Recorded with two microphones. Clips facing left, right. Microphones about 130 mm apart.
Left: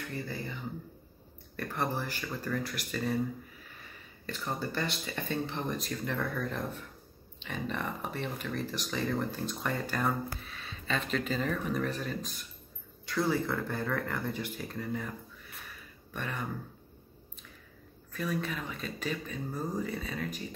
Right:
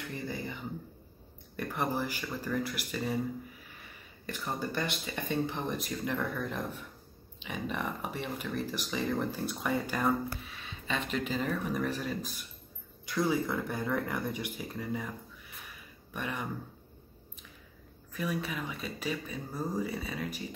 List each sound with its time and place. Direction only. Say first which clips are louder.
0.1 s speech: right 2 dB; 15° right (ahead or behind)
1.6 s speech: right 1 dB; 10° right (ahead or behind)
4.3 s speech: even; 15° right (ahead or behind)
16.1 s speech: right 1 dB; 10° right (ahead or behind)
18.1 s speech: even; 10° right (ahead or behind)